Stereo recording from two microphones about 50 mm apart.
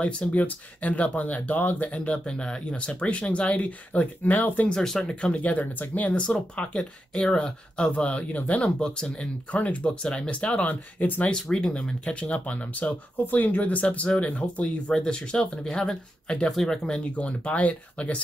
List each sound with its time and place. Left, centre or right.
0.3 s speech: left
2.0 s speech: centre
5.0 s speech: left
8.7 s speech: centre
9.5 s speech: left
11.2 s speech: centre; by 13.8 s left
13.8 s speech: centre
17.2 s speech: left